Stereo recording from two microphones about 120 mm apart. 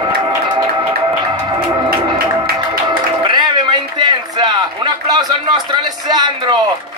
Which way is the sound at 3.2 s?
35° right (ahead or behind).